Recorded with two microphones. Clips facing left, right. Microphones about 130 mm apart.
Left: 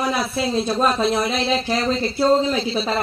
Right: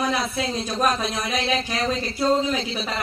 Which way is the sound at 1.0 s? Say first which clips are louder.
Left 6 dB; 30° left (ahead or behind).